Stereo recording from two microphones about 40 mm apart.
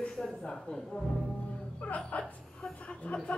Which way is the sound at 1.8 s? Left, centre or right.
Left.